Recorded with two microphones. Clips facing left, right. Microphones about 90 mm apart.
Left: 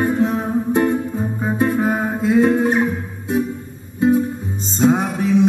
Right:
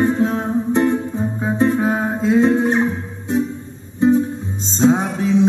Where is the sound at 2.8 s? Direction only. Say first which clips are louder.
Even; 25° right (ahead or behind).